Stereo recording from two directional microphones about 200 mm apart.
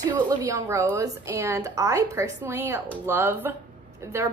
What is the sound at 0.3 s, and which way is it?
A woman's voice, 15° right (ahead or behind).